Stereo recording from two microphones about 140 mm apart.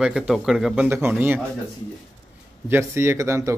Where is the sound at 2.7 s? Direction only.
20° right (ahead or behind).